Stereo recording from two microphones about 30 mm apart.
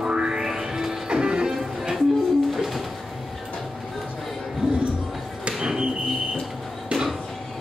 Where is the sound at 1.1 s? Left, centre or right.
Right.